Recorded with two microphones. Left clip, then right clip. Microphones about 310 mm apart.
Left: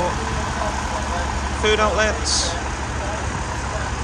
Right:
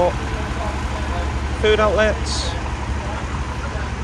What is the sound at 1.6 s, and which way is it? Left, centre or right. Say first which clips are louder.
Speech: right 2 dB; centre.